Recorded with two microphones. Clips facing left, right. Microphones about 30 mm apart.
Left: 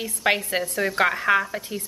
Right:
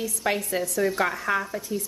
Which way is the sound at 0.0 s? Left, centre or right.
Left.